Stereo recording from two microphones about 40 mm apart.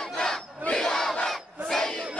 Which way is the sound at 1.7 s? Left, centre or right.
Centre.